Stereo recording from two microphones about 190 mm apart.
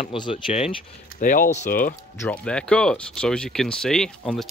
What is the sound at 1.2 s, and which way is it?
Speech, 45° left (ahead or behind).